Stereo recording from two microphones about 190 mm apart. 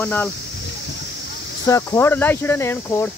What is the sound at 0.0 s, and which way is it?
Speech, 10° left (ahead or behind).